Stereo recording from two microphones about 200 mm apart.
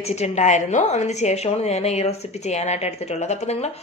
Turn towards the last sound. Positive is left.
turn(degrees=35)  # may be behind; listen again after turning